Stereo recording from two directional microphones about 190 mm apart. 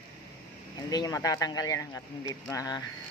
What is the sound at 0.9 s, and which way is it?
Speech, 20° left (ahead or behind).